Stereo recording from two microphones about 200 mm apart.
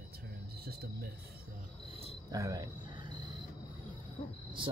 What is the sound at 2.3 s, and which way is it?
Speech, 20° right (ahead or behind).